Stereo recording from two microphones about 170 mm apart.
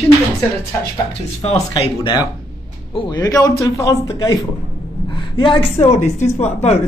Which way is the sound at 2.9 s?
25° left (ahead or behind).